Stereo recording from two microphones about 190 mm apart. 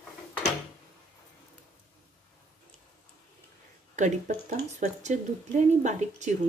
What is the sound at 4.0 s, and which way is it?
Speech, 40° right (ahead or behind).